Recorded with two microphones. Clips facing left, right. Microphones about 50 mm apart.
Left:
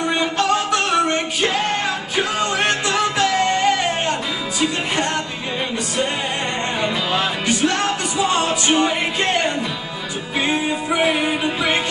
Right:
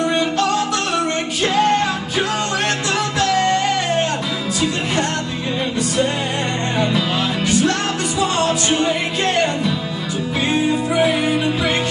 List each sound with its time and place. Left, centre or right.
0.2 s music: left
2.1 s music: centre
7.4 s music: left
10.4 s music: centre